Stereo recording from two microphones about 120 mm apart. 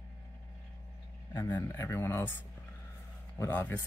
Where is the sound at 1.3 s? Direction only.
20° left (ahead or behind).